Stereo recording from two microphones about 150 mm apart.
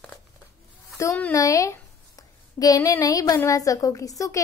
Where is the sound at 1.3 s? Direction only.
20° left (ahead or behind).